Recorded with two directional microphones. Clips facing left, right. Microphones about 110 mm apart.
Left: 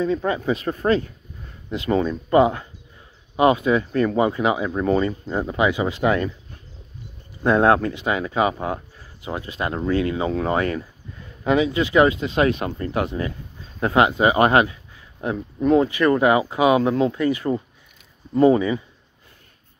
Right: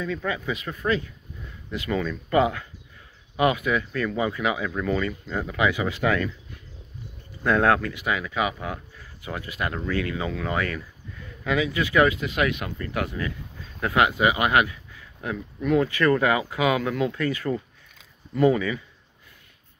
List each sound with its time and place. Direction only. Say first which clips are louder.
0.0 s speech: left 7 dB; 35° left (ahead or behind)
18.3 s speech: left 5 dB; 30° left (ahead or behind)